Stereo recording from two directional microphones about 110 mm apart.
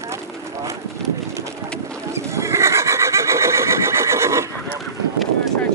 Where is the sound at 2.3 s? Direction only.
25° right (ahead or behind).